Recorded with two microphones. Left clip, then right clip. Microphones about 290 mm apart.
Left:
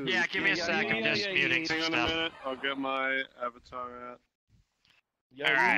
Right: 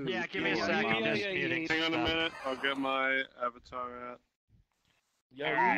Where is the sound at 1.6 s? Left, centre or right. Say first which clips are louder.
Left 1 dB; centre.